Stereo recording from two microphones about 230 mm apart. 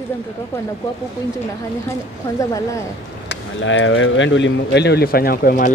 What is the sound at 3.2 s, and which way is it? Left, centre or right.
Speech, left.